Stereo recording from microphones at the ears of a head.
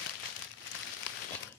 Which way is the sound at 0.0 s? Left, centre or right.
Left.